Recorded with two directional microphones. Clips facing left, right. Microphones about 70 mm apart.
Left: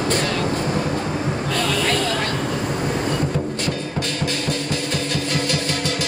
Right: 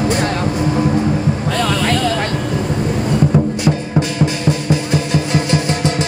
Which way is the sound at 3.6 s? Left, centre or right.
Centre.